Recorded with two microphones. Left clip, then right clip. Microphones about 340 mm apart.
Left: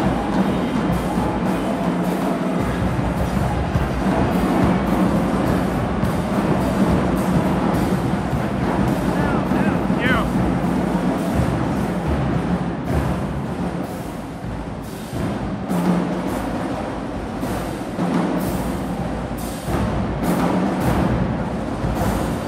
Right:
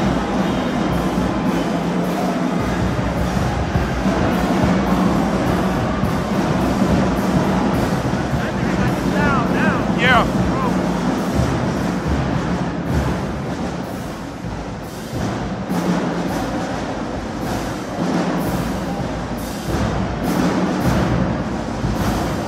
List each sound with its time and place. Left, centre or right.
9.9 s boat: centre